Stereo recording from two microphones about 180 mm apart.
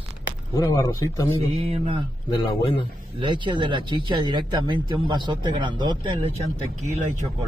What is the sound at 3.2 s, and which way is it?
Speech, 25° right (ahead or behind).